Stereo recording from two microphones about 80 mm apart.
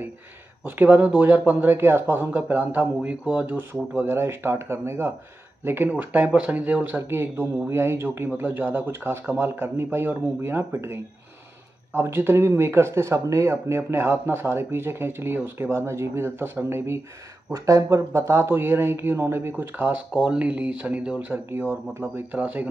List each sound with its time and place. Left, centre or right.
0.7 s speech: right
1.1 s speech: centre
3.5 s speech: right
5.9 s speech: centre
7.0 s speech: right
17.5 s speech: right
20.1 s speech: centre
21.3 s speech: right
22.3 s speech: right